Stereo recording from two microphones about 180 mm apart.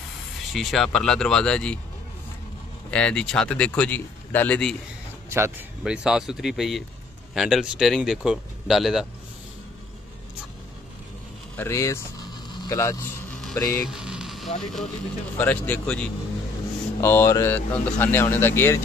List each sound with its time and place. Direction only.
0.5 s speech: centre (ahead or behind)
2.9 s a man's voice: 5° left (ahead or behind)
5.3 s speech: 15° right (ahead or behind)
6.0 s speech: centre (ahead or behind)
11.5 s a sound: 15° left (ahead or behind)
13.3 s a sound: centre (ahead or behind)
14.6 s a man's voice: centre (ahead or behind)